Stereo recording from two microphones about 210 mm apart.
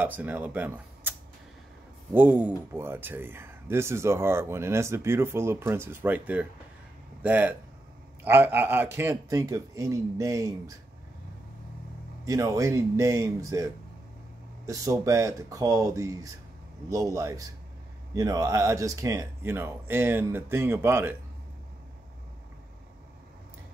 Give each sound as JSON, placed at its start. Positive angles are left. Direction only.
{"t": 0.0, "sound": "speech", "side_deg": -10}
{"t": 2.1, "sound": "speech", "side_deg": -5}
{"t": 12.3, "sound": "speech", "side_deg": -15}
{"t": 14.7, "sound": "speech", "side_deg": -15}